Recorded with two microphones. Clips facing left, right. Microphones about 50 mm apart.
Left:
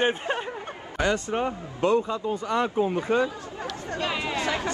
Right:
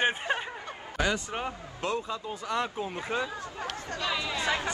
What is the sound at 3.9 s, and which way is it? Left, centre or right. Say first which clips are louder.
Speech: left 4 dB; left.